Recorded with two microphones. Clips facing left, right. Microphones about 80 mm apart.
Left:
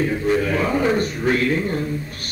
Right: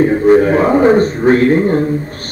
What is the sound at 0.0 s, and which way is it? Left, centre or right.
A man's voice, right.